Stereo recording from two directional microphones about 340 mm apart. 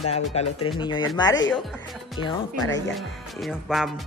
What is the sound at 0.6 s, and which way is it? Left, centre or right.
Music, centre.